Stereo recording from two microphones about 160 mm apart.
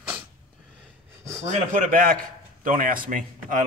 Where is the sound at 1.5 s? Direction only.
55° right (ahead or behind).